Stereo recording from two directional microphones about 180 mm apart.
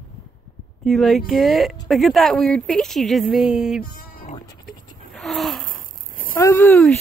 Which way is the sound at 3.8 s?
55° left (ahead or behind).